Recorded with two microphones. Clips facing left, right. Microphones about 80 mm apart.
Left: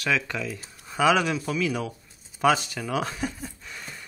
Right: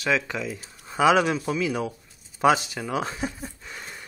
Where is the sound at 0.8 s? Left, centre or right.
Right.